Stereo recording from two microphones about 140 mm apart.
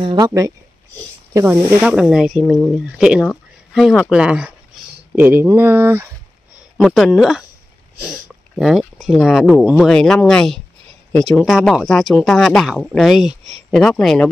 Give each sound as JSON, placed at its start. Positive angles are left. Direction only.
{"t": 0.0, "sound": "speech", "side_deg": -30}
{"t": 1.3, "sound": "speech", "side_deg": -15}
{"t": 6.8, "sound": "speech", "side_deg": 0}